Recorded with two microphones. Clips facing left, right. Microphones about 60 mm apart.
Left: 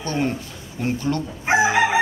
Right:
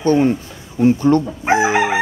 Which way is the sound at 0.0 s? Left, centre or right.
Right.